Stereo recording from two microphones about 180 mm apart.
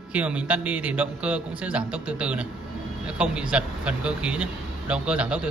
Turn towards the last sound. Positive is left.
turn(degrees=-5)  # may be behind; listen again after turning